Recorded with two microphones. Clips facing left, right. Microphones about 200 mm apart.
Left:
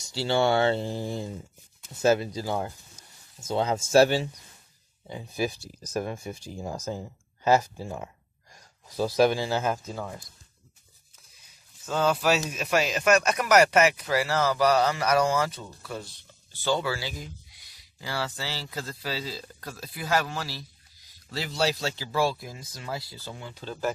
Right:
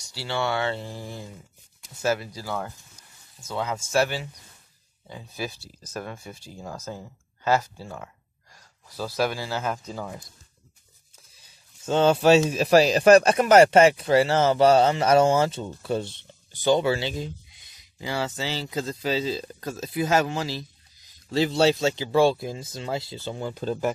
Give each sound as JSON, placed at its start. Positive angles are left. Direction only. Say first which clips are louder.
{"t": 0.1, "sound": "speech", "louder": "left 4 dB", "side_deg": 25}
{"t": 5.0, "sound": "speech", "louder": "left 4 dB", "side_deg": 15}
{"t": 11.8, "sound": "speech", "louder": "right 6 dB", "side_deg": -25}
{"t": 23.4, "sound": "speech", "louder": "right 11 dB", "side_deg": -40}